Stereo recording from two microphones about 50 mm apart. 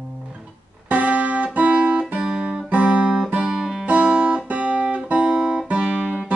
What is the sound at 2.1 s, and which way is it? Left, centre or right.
Guitar, centre.